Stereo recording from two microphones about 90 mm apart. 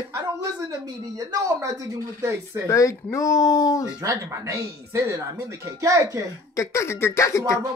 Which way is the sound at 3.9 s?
40° right (ahead or behind).